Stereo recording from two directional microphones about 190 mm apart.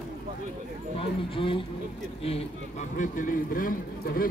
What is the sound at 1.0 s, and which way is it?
A man's voice, 25° left (ahead or behind).